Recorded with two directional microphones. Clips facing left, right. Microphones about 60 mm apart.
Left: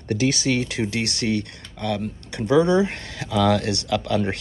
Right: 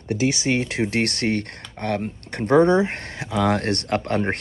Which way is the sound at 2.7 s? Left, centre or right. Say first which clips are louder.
Even; right.